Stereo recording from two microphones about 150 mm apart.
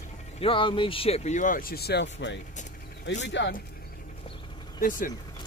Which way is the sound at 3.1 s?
55° left (ahead or behind).